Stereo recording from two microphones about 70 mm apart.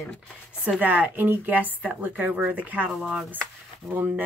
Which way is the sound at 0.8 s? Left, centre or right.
Right.